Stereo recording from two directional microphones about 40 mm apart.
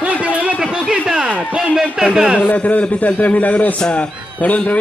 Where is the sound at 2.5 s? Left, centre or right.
Left.